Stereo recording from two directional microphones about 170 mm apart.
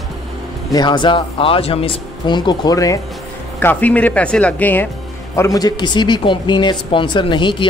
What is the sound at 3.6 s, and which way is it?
Speech, 10° left (ahead or behind).